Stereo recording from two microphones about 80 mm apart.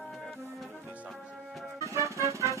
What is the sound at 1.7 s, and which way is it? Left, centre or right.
Music, right.